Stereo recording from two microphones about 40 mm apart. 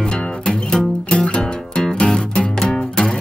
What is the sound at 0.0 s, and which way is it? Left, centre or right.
Music, left.